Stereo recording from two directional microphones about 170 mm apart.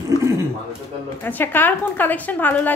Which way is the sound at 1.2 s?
10° left (ahead or behind).